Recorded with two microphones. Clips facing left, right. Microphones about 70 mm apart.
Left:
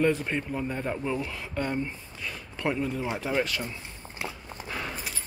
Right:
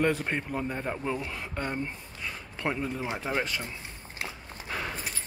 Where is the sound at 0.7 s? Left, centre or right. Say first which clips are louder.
Left 1 dB; centre.